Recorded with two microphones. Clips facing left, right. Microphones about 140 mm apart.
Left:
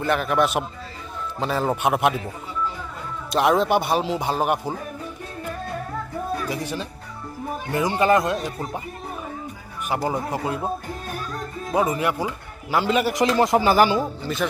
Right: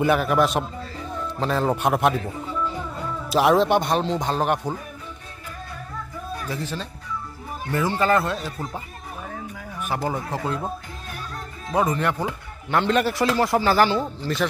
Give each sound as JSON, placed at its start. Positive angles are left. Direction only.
{"t": 0.0, "sound": "a man's voice", "side_deg": -5}
{"t": 3.3, "sound": "a man's voice", "side_deg": 0}
{"t": 6.5, "sound": "speech", "side_deg": 15}
{"t": 10.0, "sound": "speech", "side_deg": 15}
{"t": 11.7, "sound": "speech", "side_deg": 10}
{"t": 13.1, "sound": "speech", "side_deg": 20}
{"t": 14.2, "sound": "a man's voice", "side_deg": 0}